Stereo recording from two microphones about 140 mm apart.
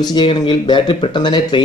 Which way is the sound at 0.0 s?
35° left (ahead or behind).